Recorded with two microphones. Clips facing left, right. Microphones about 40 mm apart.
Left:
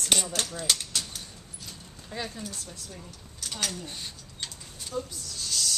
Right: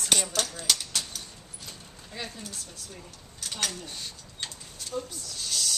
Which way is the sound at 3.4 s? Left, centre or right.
Centre.